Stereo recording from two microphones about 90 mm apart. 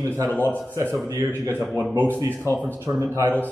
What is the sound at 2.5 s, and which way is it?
Speech, 35° right (ahead or behind).